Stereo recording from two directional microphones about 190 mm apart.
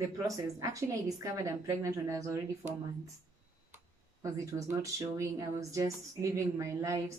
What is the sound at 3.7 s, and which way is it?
Speech, 15° right (ahead or behind).